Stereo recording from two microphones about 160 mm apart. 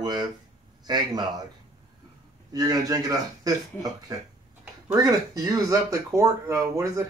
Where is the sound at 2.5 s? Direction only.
25° right (ahead or behind).